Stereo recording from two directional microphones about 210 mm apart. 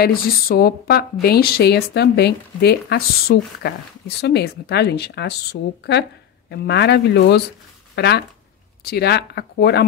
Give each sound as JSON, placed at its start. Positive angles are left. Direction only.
{"t": 0.0, "sound": "speech", "side_deg": 45}